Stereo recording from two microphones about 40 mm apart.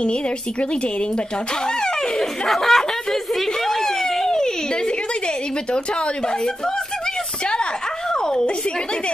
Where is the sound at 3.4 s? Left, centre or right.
Centre.